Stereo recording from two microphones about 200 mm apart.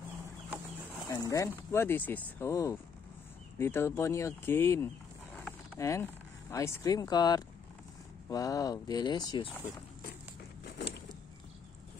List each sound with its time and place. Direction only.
1.0 s speech: 15° left (ahead or behind)
5.4 s a sound: 15° left (ahead or behind)
6.5 s speech: 15° left (ahead or behind)